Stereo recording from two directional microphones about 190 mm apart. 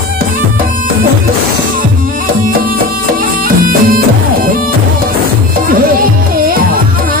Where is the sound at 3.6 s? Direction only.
50° right (ahead or behind).